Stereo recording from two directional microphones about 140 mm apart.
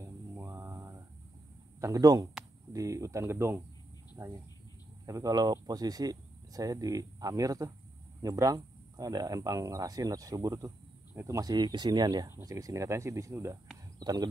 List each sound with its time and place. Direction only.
0.0 s mantra: 20° right (ahead or behind)
1.8 s speech: 25° right (ahead or behind)
5.0 s speech: 25° right (ahead or behind)